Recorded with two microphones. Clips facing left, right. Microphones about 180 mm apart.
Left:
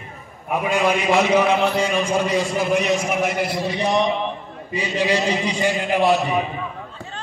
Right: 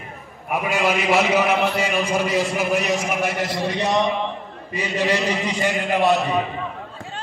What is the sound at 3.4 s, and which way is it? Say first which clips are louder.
A man's voice: left 1 dB; 10° left (ahead or behind).